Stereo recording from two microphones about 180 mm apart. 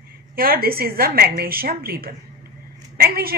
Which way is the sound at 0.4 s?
55° right (ahead or behind).